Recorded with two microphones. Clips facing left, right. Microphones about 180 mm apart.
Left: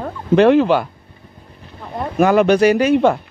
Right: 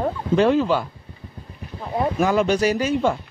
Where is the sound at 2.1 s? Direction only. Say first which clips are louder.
Left 8 dB; 60° left (ahead or behind).